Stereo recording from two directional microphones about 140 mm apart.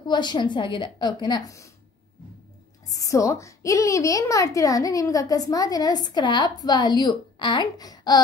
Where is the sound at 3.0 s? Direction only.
25° left (ahead or behind).